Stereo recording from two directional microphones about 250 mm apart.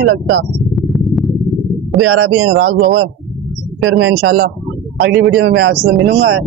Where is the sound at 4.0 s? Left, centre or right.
Right.